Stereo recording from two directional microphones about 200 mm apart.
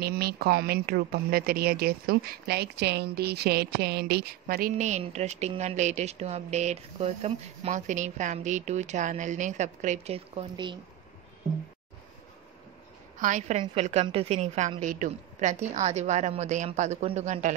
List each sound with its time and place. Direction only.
0.0 s speech: 50° right (ahead or behind); by 10.8 s 25° right (ahead or behind)
13.2 s speech: 35° right (ahead or behind)